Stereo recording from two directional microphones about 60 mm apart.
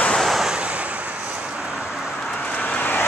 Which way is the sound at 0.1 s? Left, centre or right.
Centre.